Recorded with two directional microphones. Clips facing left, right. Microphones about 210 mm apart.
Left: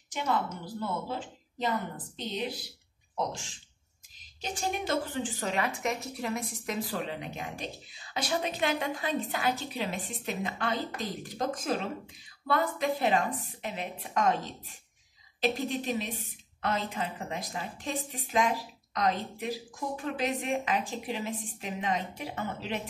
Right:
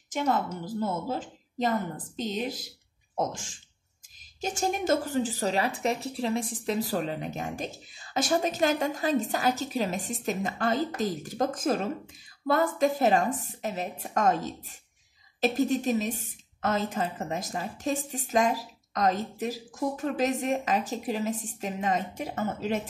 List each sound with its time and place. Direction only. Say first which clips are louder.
0.1 s speech: right 4 dB; 45° right (ahead or behind)